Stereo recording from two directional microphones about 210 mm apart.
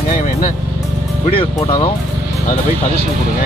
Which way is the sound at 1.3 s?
25° left (ahead or behind).